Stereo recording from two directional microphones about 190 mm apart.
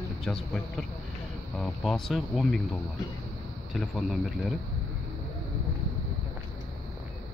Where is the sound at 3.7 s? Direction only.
Centre (ahead or behind).